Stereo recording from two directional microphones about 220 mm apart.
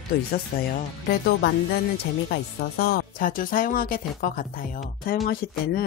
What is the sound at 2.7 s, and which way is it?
Speech, 45° left (ahead or behind).